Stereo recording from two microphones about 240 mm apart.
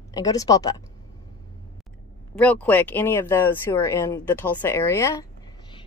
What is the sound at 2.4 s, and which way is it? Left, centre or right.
Speech, centre.